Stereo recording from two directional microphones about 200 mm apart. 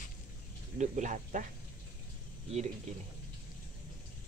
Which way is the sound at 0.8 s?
35° right (ahead or behind).